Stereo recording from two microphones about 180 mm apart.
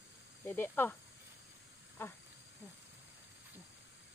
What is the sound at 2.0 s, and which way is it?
Speech, 10° left (ahead or behind).